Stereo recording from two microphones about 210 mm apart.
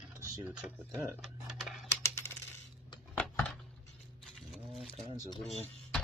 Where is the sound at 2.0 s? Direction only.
15° left (ahead or behind).